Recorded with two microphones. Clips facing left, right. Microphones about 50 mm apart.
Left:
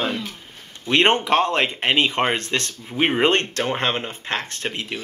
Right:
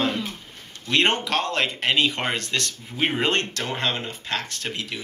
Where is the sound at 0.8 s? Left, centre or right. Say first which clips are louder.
Left 4 dB; left.